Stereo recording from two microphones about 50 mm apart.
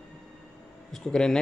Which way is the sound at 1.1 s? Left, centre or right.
Centre.